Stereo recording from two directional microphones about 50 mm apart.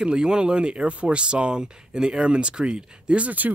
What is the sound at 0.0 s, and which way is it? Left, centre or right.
Speech, centre.